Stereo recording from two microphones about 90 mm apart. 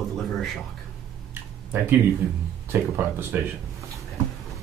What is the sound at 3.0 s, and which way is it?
Speech, 20° right (ahead or behind).